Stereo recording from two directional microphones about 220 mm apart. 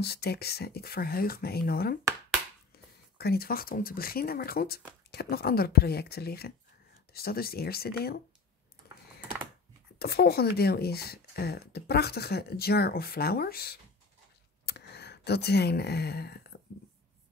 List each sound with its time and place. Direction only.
0.0 s speech: 45° left (ahead or behind)
3.2 s speech: 45° left (ahead or behind)
9.9 s speech: 45° left (ahead or behind)